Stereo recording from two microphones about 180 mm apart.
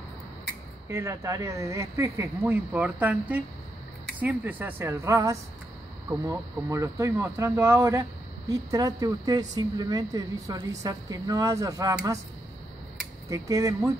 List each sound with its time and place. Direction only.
0.8 s speech: 15° right (ahead or behind)
13.3 s speech: 20° right (ahead or behind)